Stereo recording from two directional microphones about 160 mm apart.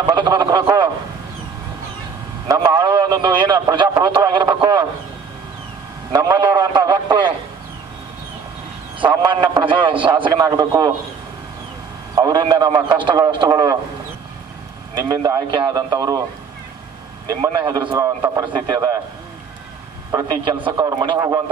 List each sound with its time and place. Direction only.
0.1 s a man's voice: 30° right (ahead or behind)
2.4 s a man's voice: 25° right (ahead or behind)
6.2 s a man's voice: 25° right (ahead or behind)
9.0 s a man's voice: 30° right (ahead or behind)
12.2 s a man's voice: 25° right (ahead or behind)
15.0 s a man's voice: 25° right (ahead or behind)
17.4 s a man's voice: 25° right (ahead or behind)
20.1 s a man's voice: 20° right (ahead or behind)